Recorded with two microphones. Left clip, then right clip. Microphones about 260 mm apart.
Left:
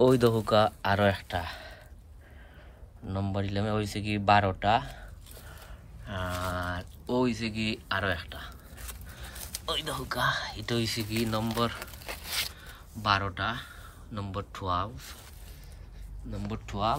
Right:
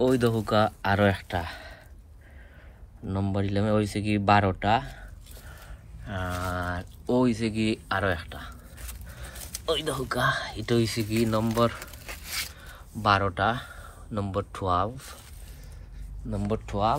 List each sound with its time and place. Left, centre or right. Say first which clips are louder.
0.0 s speech: left 1 dB; centre
3.1 s speech: right 4 dB; centre
6.0 s speech: right 2 dB; centre
9.7 s speech: right 5 dB; centre
11.8 s a sound: left 1 dB; left
12.5 s speech: right 3 dB; centre
16.3 s speech: right 8 dB; centre